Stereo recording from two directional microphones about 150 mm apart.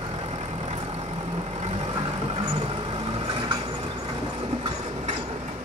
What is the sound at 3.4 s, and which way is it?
Vehicle, 30° right (ahead or behind).